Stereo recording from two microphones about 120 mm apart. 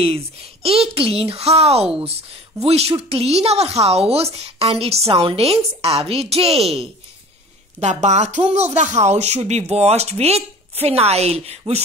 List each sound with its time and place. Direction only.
0.0 s speech: 55° right (ahead or behind)
7.8 s speech: 75° right (ahead or behind); by 11.8 s 60° right (ahead or behind)